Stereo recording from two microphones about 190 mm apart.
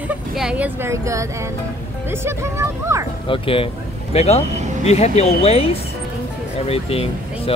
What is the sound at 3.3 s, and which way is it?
Speech, 30° left (ahead or behind).